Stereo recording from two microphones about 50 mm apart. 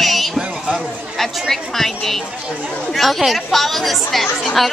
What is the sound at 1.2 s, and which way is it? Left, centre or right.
A woman's voice, centre.